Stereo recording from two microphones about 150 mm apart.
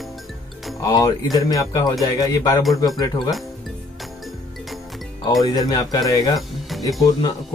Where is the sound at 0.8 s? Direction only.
25° left (ahead or behind).